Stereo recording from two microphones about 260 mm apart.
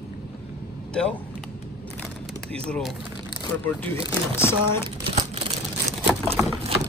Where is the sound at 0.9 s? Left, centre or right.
Centre.